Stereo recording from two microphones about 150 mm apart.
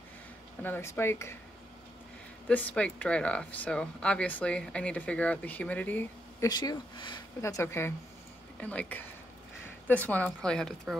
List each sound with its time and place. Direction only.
0.6 s speech: 15° left (ahead or behind)
2.4 s speech: 10° left (ahead or behind)
6.4 s speech: 25° left (ahead or behind)
7.4 s speech: 20° left (ahead or behind)